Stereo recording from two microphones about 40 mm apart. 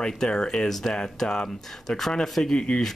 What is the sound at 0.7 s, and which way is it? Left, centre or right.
Speech, centre.